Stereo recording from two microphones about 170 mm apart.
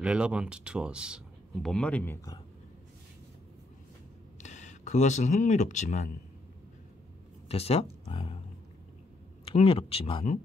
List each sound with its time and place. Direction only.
0.0 s speech: 5° right (ahead or behind)
4.4 s speech: 45° left (ahead or behind)
7.4 s speech: 35° left (ahead or behind)
9.4 s speech: 35° left (ahead or behind)